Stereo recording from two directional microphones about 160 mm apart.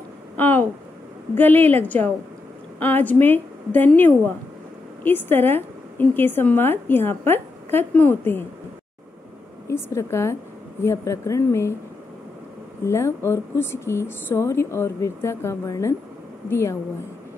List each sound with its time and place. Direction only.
0.4 s a woman's voice: 10° left (ahead or behind)
9.7 s a woman's voice: 15° left (ahead or behind)
12.8 s a woman's voice: 15° left (ahead or behind)